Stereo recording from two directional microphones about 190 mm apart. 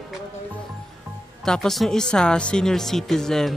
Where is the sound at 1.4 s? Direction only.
5° left (ahead or behind).